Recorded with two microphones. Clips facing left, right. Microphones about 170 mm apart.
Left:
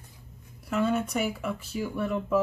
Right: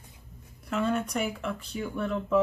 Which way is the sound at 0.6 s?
5° left (ahead or behind).